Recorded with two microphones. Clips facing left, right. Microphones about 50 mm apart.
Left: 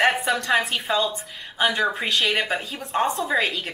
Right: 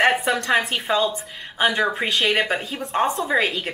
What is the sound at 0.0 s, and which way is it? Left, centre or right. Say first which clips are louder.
A woman's voice: right 2 dB; centre.